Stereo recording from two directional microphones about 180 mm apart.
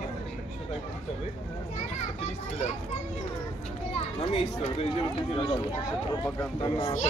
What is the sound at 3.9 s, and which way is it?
Speech, 35° left (ahead or behind).